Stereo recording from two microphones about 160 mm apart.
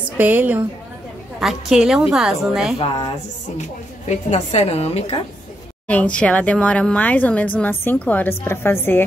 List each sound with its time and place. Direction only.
0.2 s a woman's voice: 10° right (ahead or behind)
4.1 s a woman's voice: 40° left (ahead or behind)
5.9 s speech: 10° left (ahead or behind)